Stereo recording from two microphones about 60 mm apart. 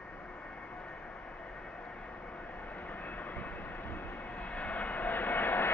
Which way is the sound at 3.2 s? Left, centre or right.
Left.